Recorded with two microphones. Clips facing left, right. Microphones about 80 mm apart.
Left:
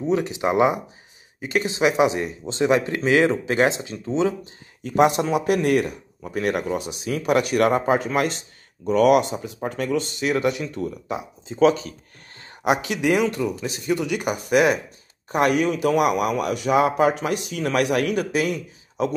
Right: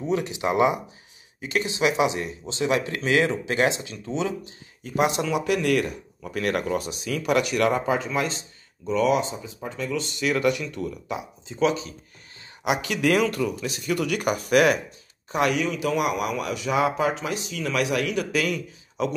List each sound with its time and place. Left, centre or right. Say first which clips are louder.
0.2 s speech: left 2 dB; left
2.2 s speech: left 4 dB; left
2.7 s speech: left 3 dB; left
6.2 s speech: left 2 dB; left
7.1 s speech: left 3 dB; left
12.4 s a sound: left 4 dB; left
12.9 s speech: left 1 dB; centre; by 13.9 s left
13.9 s speech: right 2 dB; centre
15.2 s a man's voice: left 4 dB; left